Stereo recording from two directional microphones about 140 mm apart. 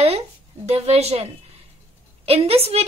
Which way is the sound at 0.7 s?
50° right (ahead or behind).